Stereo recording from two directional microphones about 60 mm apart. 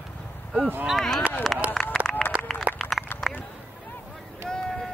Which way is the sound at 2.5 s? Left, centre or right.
Centre.